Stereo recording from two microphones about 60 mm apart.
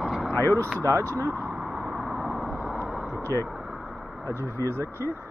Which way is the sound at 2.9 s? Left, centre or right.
Centre.